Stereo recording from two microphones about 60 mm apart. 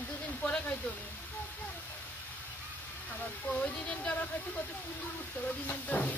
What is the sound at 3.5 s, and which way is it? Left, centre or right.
Speech, centre.